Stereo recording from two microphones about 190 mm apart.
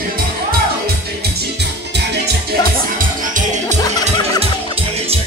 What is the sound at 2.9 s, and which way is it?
Music, 45° right (ahead or behind).